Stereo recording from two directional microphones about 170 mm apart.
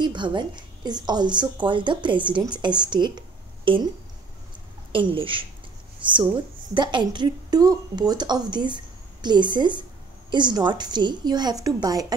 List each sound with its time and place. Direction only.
0.0 s a woman's voice: 25° right (ahead or behind)
4.9 s a woman's voice: 30° right (ahead or behind)